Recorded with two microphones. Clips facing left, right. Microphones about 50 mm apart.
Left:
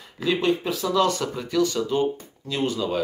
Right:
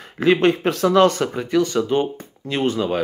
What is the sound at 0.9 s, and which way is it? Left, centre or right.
Speech, right.